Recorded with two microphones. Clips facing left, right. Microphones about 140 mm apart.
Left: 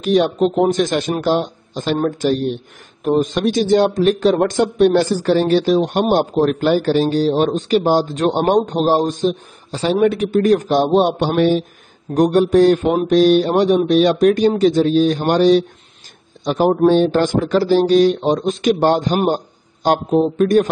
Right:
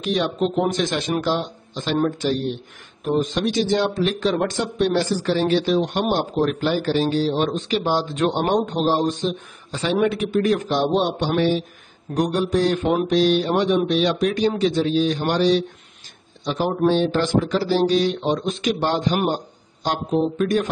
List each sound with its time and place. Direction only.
0.0 s a man's voice: 45° left (ahead or behind)